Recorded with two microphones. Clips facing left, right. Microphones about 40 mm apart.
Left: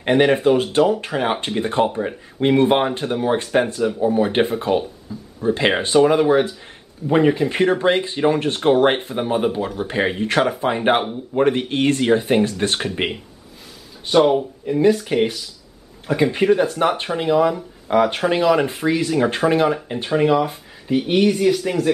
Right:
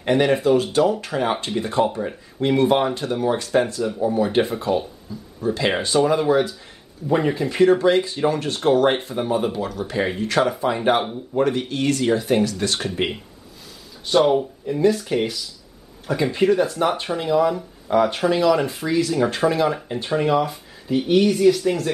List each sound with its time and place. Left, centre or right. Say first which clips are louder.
0.0 s speech: left 3 dB; left
14.0 s speech: left 2 dB; centre
15.0 s speech: left 3 dB; left